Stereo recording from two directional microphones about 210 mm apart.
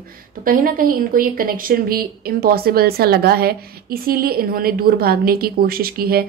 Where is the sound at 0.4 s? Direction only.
40° right (ahead or behind).